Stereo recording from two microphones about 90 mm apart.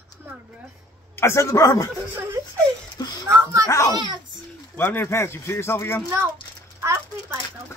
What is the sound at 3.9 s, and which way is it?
Speech, 50° right (ahead or behind).